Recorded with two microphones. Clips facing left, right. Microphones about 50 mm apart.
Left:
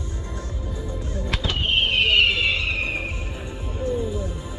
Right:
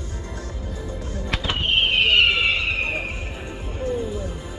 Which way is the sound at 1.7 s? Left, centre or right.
Centre.